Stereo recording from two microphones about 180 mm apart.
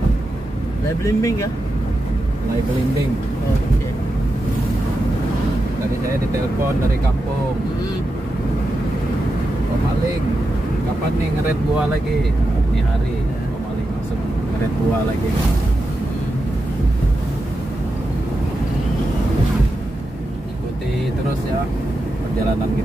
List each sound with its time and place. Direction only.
1.0 s speech: 15° left (ahead or behind)